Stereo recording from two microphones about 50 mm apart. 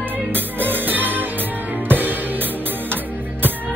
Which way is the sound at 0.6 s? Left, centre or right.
Right.